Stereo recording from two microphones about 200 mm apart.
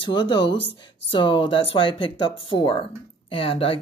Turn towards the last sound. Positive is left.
turn(degrees=30)  # may be behind; listen again after turning